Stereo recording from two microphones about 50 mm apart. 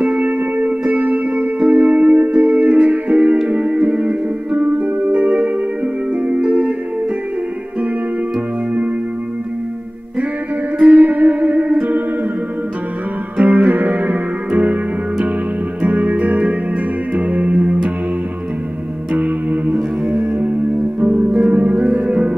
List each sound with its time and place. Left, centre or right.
0.0 s music: right
10.8 s music: right
13.4 s music: right
15.8 s music: right
19.1 s music: right